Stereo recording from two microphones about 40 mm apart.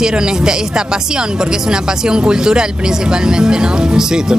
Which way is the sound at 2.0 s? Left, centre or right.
Right.